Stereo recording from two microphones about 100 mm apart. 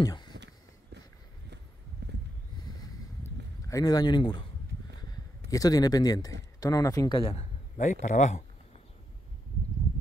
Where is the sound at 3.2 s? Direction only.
35° left (ahead or behind); by 4.4 s 50° left (ahead or behind).